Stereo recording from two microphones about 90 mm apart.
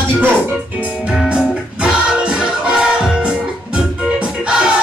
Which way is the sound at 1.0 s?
10° right (ahead or behind).